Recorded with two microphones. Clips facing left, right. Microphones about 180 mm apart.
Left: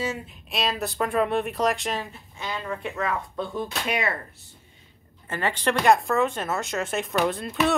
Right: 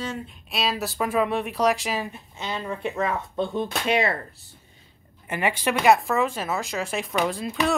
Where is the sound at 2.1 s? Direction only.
20° right (ahead or behind).